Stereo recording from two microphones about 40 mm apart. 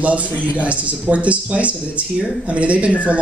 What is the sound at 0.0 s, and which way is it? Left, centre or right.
Speech, right.